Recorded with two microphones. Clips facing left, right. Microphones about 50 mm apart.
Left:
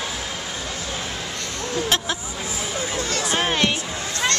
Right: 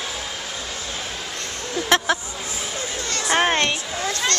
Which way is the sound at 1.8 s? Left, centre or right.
Right.